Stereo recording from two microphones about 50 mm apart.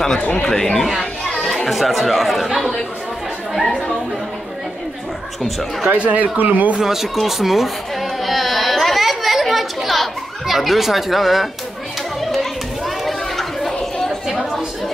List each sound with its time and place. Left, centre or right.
0.4 s speech: centre
5.4 s speech: centre
5.9 s speech: right
6.8 s speech: centre
7.2 s a sound: centre
12.8 s children playing: centre
14.3 s chatter: centre